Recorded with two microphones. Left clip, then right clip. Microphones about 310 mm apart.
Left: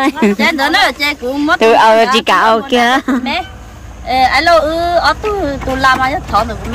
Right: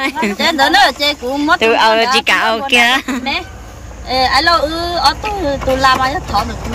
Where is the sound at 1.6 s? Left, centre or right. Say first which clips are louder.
Left 5 dB; left.